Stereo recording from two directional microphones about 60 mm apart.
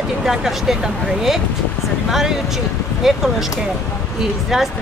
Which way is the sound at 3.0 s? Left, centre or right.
Centre.